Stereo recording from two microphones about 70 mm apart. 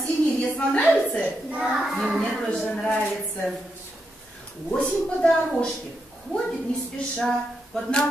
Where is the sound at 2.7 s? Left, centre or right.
Centre.